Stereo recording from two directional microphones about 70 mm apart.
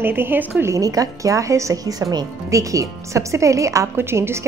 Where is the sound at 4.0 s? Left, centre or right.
Right.